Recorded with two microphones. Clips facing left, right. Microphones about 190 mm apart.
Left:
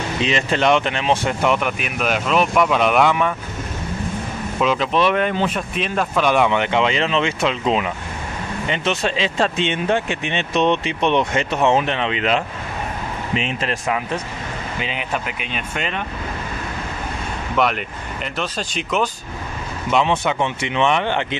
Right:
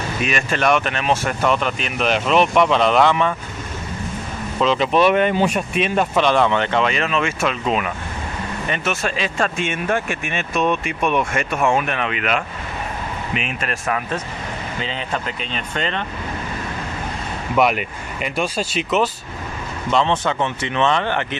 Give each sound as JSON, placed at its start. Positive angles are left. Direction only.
{"t": 0.2, "sound": "speech", "side_deg": 25}
{"t": 4.6, "sound": "speech", "side_deg": 5}
{"t": 6.2, "sound": "speech", "side_deg": 10}
{"t": 17.6, "sound": "speech", "side_deg": -10}
{"t": 19.9, "sound": "speech", "side_deg": 10}